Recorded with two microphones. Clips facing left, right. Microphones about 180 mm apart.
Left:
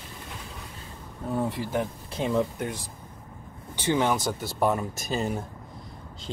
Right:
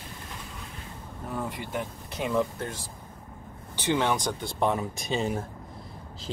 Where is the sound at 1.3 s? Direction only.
25° left (ahead or behind).